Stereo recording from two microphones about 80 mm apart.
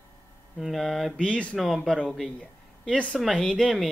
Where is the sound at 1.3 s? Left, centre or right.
Centre.